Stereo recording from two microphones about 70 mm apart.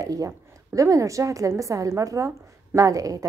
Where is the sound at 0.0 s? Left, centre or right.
Right.